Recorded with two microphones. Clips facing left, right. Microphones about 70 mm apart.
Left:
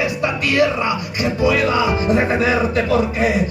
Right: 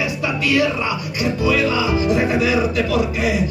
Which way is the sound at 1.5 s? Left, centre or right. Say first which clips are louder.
Left 1 dB; left.